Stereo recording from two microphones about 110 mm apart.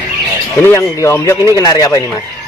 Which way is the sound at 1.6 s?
35° left (ahead or behind).